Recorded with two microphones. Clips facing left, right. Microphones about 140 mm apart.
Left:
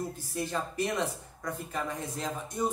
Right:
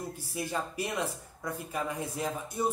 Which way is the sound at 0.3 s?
10° right (ahead or behind).